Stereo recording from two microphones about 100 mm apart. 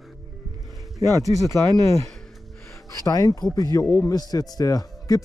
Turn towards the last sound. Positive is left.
turn(degrees=35)  # may be behind; listen again after turning